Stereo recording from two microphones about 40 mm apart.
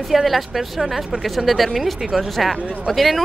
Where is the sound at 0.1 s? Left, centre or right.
Centre.